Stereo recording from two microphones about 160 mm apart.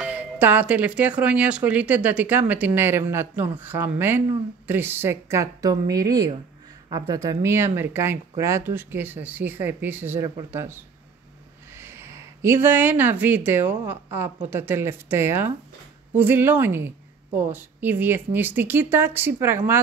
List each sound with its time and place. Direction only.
0.0 s speech: 10° right (ahead or behind)
11.8 s speech: 15° right (ahead or behind)